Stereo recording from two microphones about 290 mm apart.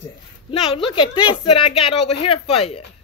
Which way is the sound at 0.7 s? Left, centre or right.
Centre.